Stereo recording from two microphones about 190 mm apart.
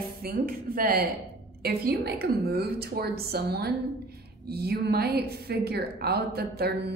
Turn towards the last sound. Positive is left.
turn(degrees=-60)  # may be behind; listen again after turning